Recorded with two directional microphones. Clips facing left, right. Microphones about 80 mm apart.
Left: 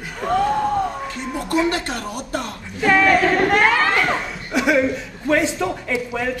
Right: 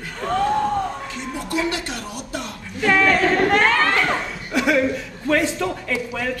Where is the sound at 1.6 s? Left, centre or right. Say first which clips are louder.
Left 3 dB; left.